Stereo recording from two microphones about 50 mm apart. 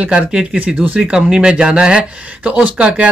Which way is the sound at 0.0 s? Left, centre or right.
Centre.